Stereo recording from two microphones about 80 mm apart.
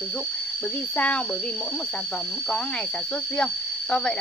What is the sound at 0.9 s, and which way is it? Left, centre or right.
Speech, centre.